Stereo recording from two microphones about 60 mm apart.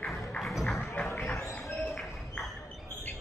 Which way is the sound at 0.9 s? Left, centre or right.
Left.